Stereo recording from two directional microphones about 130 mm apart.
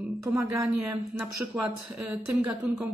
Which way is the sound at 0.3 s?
20° right (ahead or behind).